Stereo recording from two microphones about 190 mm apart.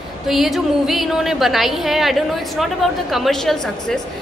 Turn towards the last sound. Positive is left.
turn(degrees=0)  # may be behind; listen again after turning